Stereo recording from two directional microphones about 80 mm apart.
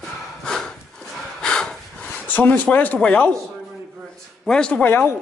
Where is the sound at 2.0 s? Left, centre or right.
Left.